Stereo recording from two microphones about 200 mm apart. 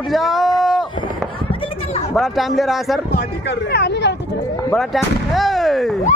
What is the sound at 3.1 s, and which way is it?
Speech, 55° left (ahead or behind).